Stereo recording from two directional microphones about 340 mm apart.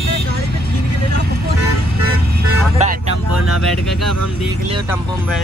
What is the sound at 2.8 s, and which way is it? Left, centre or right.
Vehicle, centre.